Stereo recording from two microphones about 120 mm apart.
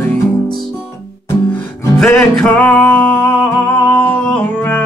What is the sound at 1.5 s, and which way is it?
Music, 25° left (ahead or behind).